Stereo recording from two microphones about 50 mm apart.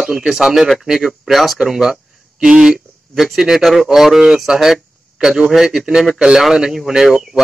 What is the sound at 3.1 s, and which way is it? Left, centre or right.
Speech, centre.